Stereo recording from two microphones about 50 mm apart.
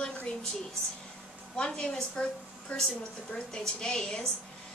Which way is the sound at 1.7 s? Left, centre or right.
Centre.